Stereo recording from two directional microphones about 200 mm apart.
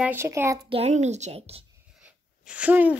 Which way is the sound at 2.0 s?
5° right (ahead or behind).